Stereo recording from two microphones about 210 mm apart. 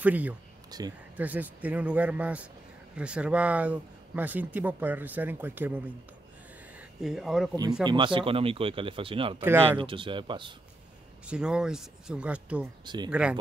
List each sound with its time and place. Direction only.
0.0 s speech: 5° right (ahead or behind)
0.7 s speech: 20° right (ahead or behind)
1.1 s speech: 10° right (ahead or behind)
6.8 s speech: centre (ahead or behind)
7.8 s speech: 20° right (ahead or behind)
9.4 s speech: 10° right (ahead or behind)
9.7 s speech: 25° right (ahead or behind)
11.2 s speech: 5° right (ahead or behind)
12.8 s speech: 20° right (ahead or behind)
13.1 s speech: 5° right (ahead or behind)